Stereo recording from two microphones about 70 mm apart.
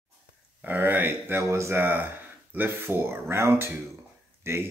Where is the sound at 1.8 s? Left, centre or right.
Right.